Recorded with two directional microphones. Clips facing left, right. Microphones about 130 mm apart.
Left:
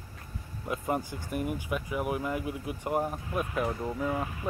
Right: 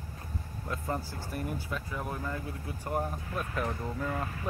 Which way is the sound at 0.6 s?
15° left (ahead or behind).